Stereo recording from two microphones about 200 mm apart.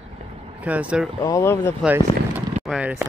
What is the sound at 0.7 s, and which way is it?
Speech, 5° right (ahead or behind).